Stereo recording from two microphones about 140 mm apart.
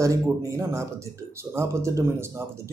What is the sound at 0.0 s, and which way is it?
Speech, 25° right (ahead or behind).